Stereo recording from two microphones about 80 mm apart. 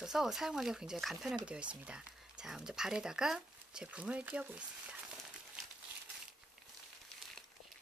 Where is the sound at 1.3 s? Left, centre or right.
Centre.